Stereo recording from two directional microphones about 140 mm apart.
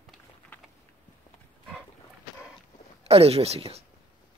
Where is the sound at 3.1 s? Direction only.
45° right (ahead or behind).